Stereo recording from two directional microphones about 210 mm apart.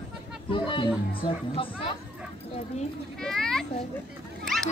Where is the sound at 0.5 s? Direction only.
25° left (ahead or behind).